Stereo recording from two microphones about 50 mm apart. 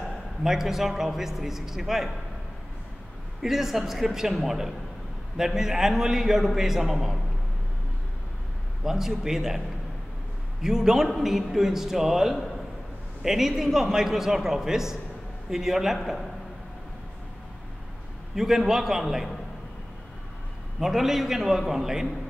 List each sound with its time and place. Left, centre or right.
0.4 s a man's voice: centre
3.4 s a man's voice: centre
8.8 s a man's voice: centre
10.6 s a man's voice: centre
18.3 s a man's voice: centre
20.8 s a man's voice: centre